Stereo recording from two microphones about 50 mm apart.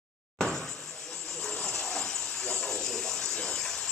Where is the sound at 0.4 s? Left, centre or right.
Centre.